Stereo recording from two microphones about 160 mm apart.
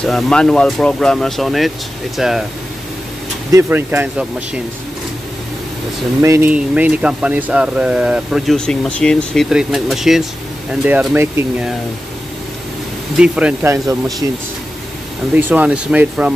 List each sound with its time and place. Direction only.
0.0 s speech: 5° left (ahead or behind)
3.5 s speech: 15° right (ahead or behind)
6.2 s speech: 15° right (ahead or behind)
13.2 s speech: 5° right (ahead or behind)